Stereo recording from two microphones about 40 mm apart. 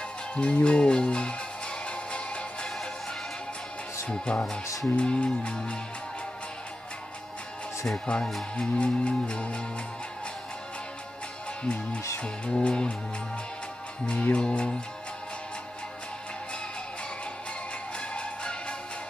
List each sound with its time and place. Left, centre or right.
0.4 s speech: left
1.9 s music: left
4.1 s speech: centre
8.1 s speech: left
11.6 s speech: left
14.3 s speech: left
18.1 s music: left